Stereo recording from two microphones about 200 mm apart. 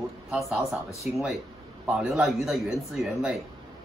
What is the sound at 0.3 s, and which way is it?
Speech, centre (ahead or behind).